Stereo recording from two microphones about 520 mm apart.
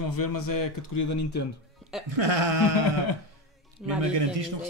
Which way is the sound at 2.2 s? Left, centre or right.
Right.